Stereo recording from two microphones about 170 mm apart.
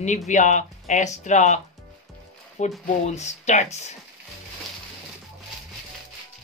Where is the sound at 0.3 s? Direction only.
45° left (ahead or behind).